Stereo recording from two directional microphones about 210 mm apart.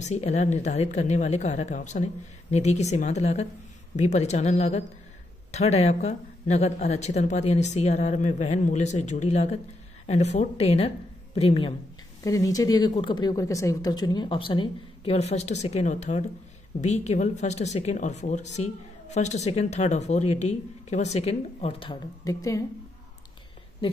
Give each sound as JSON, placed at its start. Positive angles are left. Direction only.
{"t": 0.0, "sound": "speech", "side_deg": 30}
{"t": 12.2, "sound": "speech", "side_deg": 15}